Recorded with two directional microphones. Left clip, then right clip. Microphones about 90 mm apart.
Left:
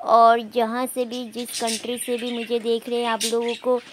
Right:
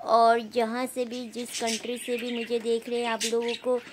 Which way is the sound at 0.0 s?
25° left (ahead or behind).